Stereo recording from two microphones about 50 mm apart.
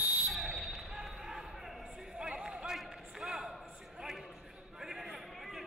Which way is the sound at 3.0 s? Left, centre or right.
Centre.